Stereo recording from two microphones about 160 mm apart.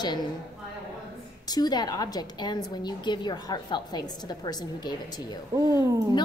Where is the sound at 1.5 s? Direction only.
25° left (ahead or behind).